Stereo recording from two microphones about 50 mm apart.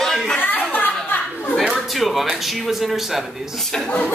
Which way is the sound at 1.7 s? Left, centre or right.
Centre.